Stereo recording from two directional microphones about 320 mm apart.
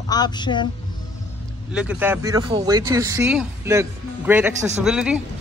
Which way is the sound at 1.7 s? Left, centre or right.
Centre.